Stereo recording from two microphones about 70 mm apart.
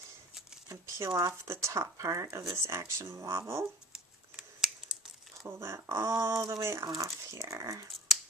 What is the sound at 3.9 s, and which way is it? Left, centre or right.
Scissors, centre.